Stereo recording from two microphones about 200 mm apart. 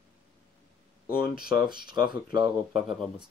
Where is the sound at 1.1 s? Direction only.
50° left (ahead or behind).